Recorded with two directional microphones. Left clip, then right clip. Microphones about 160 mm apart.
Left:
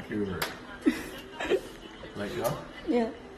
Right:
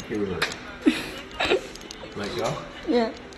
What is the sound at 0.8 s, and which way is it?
Chuckle, 15° left (ahead or behind).